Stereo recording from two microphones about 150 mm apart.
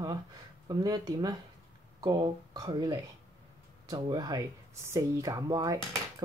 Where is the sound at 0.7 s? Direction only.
25° right (ahead or behind).